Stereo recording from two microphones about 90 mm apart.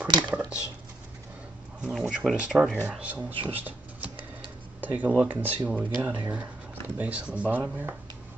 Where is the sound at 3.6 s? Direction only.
15° right (ahead or behind).